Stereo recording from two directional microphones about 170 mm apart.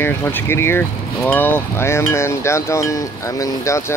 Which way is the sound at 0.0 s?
15° left (ahead or behind).